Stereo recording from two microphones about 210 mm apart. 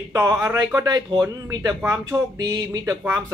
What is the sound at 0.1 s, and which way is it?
Speech, 15° right (ahead or behind).